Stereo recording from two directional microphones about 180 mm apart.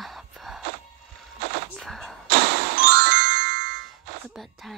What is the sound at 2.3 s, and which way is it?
Music, 60° right (ahead or behind).